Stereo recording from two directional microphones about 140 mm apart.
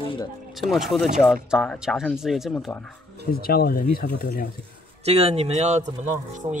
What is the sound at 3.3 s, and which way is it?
Speech, 90° left.